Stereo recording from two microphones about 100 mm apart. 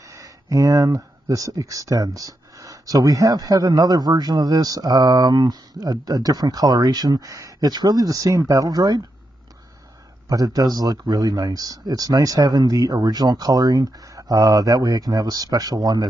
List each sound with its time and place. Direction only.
0.0 s speech: 35° right (ahead or behind)
10.2 s speech: 35° right (ahead or behind)